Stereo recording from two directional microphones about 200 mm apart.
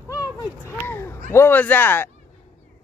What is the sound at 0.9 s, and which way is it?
Speech, 10° left (ahead or behind).